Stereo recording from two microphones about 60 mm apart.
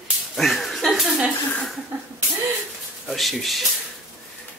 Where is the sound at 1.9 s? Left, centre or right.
Right.